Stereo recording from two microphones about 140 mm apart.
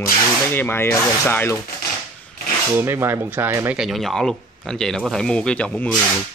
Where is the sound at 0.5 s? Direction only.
15° left (ahead or behind).